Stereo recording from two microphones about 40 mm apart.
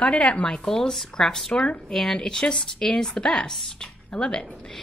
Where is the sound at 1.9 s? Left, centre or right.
Centre.